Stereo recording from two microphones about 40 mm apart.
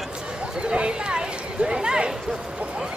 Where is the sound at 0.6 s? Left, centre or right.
Right.